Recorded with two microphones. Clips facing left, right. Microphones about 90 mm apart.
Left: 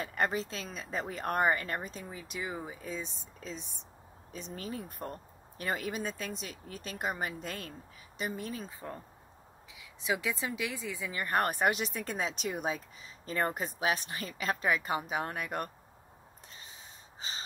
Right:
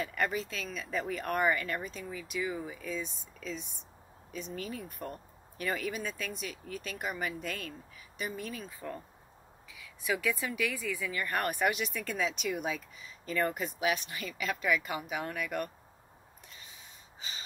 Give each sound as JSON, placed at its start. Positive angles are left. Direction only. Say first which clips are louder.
{"t": 0.0, "sound": "speech", "louder": "left 1 dB", "side_deg": 35}
{"t": 17.2, "sound": "gasp", "louder": "left 3 dB", "side_deg": 35}